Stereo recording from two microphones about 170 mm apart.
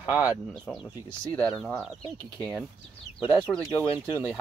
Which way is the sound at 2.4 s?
Centre (ahead or behind).